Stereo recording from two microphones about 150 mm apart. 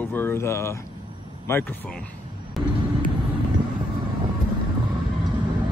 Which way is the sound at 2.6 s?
Centre (ahead or behind).